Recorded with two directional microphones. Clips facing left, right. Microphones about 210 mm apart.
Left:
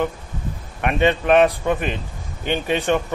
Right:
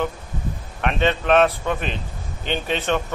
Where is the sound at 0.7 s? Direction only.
10° left (ahead or behind).